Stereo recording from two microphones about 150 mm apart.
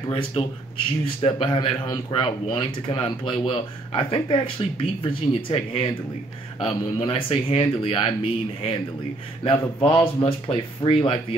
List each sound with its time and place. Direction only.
0.1 s speech: 35° left (ahead or behind)